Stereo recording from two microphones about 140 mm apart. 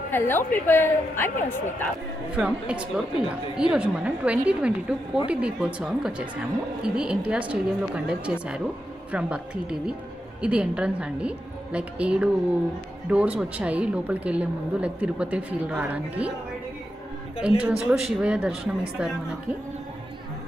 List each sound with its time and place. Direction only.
0.1 s a woman's voice: 15° left (ahead or behind)
2.3 s a woman's voice: 10° right (ahead or behind)
17.4 s a woman's voice: 5° right (ahead or behind)